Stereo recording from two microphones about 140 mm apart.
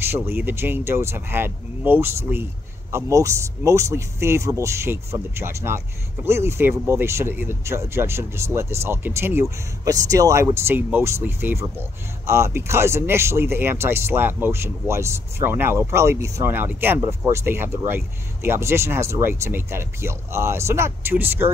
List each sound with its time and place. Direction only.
0.4 s speech: 15° right (ahead or behind)